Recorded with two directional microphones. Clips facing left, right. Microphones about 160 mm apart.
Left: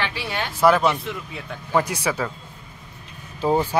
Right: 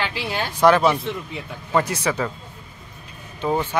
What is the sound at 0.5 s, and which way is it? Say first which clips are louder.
Speech: right 2 dB; 5° left (ahead or behind).